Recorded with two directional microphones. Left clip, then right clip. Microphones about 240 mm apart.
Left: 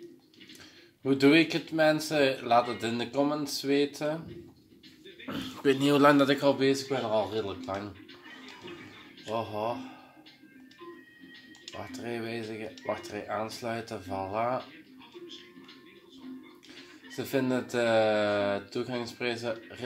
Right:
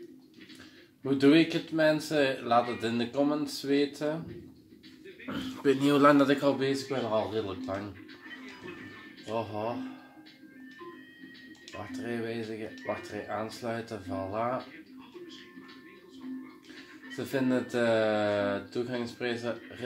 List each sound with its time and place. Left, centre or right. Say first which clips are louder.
1.0 s speech: left 1 dB; left
5.2 s speech: left 1 dB; left
11.6 s speech: even; left
17.1 s speech: even; left